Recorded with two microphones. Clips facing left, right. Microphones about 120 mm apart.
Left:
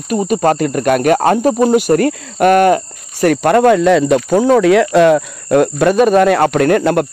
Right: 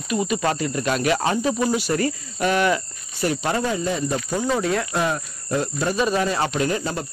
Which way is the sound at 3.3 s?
65° left (ahead or behind).